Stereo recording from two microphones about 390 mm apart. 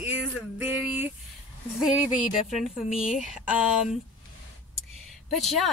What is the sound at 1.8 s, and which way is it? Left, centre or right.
Speech, centre.